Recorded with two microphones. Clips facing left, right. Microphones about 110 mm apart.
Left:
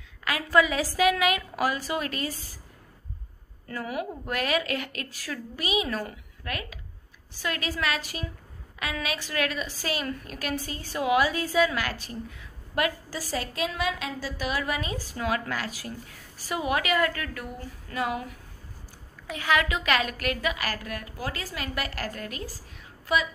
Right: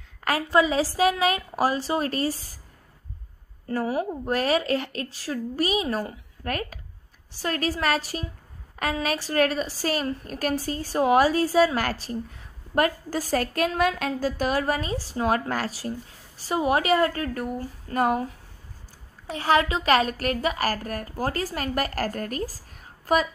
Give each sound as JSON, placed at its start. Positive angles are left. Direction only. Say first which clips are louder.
{"t": 0.5, "sound": "a woman's voice", "louder": "right 1 dB", "side_deg": -30}
{"t": 3.6, "sound": "a woman's voice", "louder": "right 6 dB", "side_deg": -35}
{"t": 19.2, "sound": "a woman's voice", "louder": "right 4 dB", "side_deg": -35}